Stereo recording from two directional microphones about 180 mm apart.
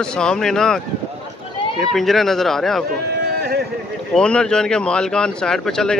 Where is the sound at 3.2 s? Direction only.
65° right (ahead or behind).